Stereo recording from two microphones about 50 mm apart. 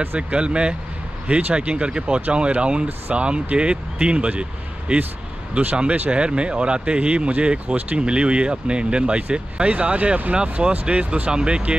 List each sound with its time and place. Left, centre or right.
0.3 s speech: right